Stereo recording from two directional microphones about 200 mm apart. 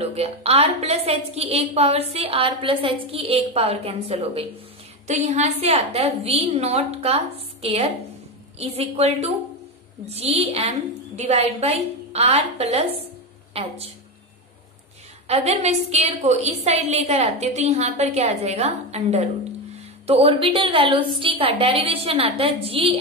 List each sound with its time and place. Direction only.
0.0 s a woman's voice: 30° right (ahead or behind)
15.2 s a woman's voice: 30° right (ahead or behind)